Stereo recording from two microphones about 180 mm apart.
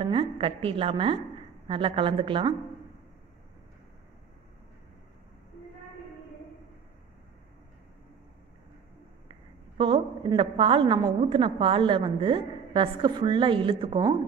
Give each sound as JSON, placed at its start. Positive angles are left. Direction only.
{"t": 0.0, "sound": "a woman's voice", "side_deg": -25}
{"t": 9.3, "sound": "a woman's voice", "side_deg": -30}